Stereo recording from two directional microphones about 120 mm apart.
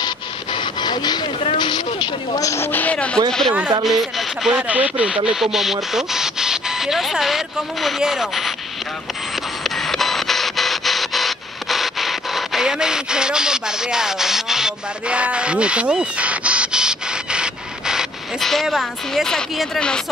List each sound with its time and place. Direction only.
0.0 s printer: 40° left (ahead or behind)
1.6 s speech: 40° left (ahead or behind)
2.4 s speech: 20° left (ahead or behind); by 8.5 s centre (ahead or behind)
9.6 s rub: centre (ahead or behind)